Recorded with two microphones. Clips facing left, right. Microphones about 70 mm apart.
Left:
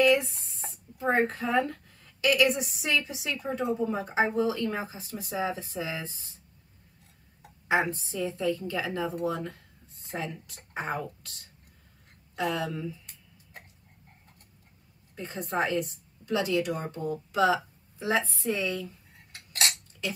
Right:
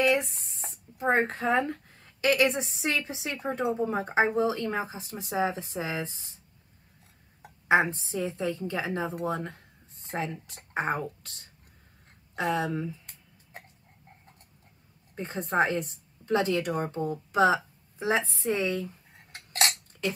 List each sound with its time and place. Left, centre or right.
0.1 s a woman's voice: right
7.6 s a woman's voice: right
12.4 s a sound: right
15.1 s a woman's voice: right
17.9 s cutlery: right